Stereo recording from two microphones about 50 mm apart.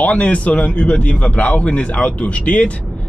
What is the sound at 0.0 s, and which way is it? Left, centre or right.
Speech, left.